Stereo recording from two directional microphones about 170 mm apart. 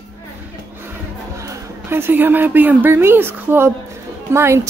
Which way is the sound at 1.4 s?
15° right (ahead or behind).